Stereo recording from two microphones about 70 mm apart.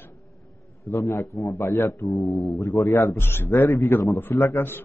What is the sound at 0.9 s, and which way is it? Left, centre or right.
Speech, left.